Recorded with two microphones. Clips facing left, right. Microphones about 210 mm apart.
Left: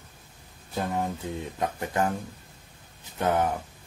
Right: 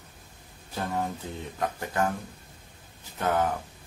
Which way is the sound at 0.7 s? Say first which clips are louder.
Left 2 dB; 15° left (ahead or behind).